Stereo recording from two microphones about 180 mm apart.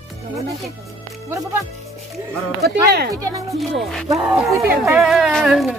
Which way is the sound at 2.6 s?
65° right (ahead or behind).